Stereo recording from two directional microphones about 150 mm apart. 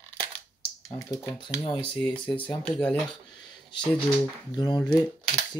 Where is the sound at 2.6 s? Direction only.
10° left (ahead or behind).